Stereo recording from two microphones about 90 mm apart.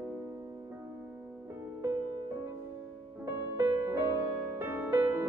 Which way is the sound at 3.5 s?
30° right (ahead or behind).